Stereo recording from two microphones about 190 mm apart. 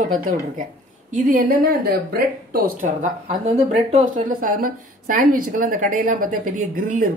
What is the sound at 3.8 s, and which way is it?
Speech, 35° right (ahead or behind).